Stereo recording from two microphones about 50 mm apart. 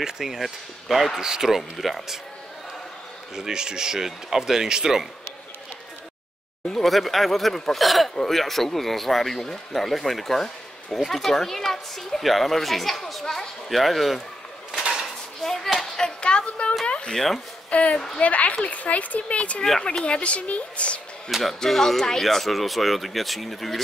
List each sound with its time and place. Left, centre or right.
0.0 s speech: centre
1.6 s speech: centre
3.3 s speech: centre
6.7 s speech: centre
14.8 s dishes: centre
15.4 s a sound: centre
16.2 s a sound: centre
16.8 s cat: left
17.1 s speech: centre
17.6 s speech: left
21.3 s speech: centre